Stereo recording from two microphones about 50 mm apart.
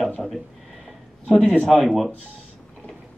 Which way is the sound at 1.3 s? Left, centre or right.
Left.